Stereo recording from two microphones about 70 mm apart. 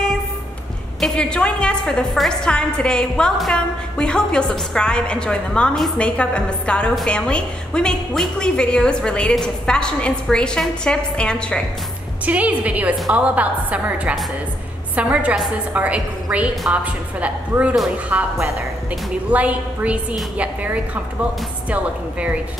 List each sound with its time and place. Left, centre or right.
1.0 s a woman's voice: centre
12.3 s a woman's voice: centre
19.3 s a woman's voice: centre